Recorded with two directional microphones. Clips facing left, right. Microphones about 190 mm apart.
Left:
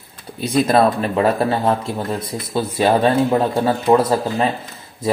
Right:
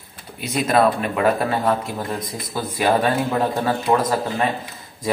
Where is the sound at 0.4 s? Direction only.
35° left (ahead or behind).